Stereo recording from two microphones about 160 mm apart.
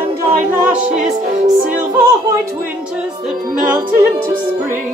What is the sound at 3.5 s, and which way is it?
Music, 10° right (ahead or behind).